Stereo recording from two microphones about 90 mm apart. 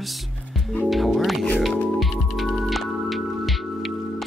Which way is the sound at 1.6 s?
Centre (ahead or behind).